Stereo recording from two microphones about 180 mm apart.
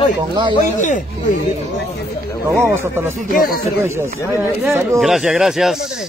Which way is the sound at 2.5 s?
15° right (ahead or behind).